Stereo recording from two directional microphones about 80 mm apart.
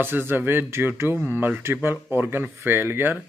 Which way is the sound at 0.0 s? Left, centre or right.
Right.